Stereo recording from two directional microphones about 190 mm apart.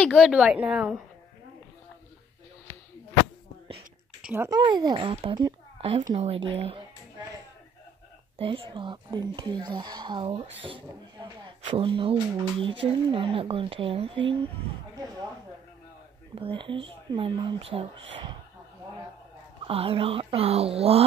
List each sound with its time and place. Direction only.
0.0 s a woman's voice: 5° right (ahead or behind)
4.2 s a sound: 5° right (ahead or behind)
4.5 s speech: 25° right (ahead or behind)
8.4 s speech: 25° right (ahead or behind)
16.3 s speech: 25° right (ahead or behind)
19.6 s speech: 30° right (ahead or behind)